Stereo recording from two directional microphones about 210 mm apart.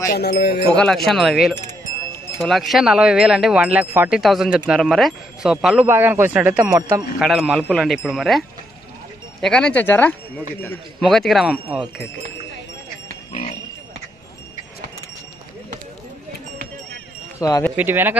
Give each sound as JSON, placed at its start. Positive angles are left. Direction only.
{"t": 0.1, "sound": "speech", "side_deg": 50}
{"t": 0.7, "sound": "speech", "side_deg": 0}
{"t": 17.4, "sound": "speech", "side_deg": 15}
{"t": 17.7, "sound": "speech", "side_deg": -10}